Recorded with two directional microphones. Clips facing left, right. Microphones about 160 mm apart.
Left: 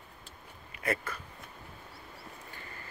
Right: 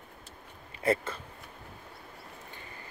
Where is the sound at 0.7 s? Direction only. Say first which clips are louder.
Right 6 dB; 30° right (ahead or behind).